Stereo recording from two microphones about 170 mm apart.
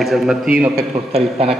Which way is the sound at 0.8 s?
35° right (ahead or behind).